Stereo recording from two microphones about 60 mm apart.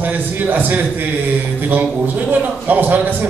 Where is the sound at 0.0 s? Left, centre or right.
Right.